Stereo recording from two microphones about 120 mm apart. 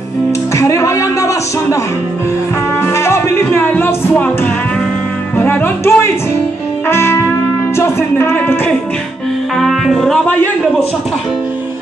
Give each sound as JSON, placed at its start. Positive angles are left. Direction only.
{"t": 0.6, "sound": "a sound", "side_deg": 25}
{"t": 2.8, "sound": "music", "side_deg": 20}
{"t": 5.4, "sound": "music", "side_deg": 20}
{"t": 9.6, "sound": "music", "side_deg": 0}